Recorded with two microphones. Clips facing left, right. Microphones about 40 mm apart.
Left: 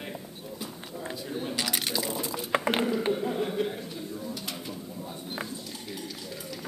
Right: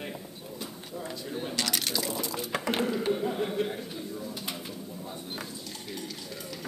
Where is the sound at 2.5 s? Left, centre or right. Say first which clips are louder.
Left 5 dB; left.